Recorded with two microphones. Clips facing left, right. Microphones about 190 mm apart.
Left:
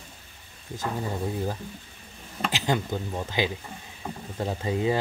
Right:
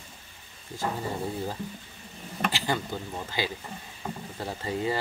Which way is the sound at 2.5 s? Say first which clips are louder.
Left 3 dB; 20° left (ahead or behind).